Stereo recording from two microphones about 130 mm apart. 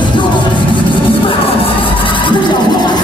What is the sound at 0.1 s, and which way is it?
Vehicle, 35° left (ahead or behind).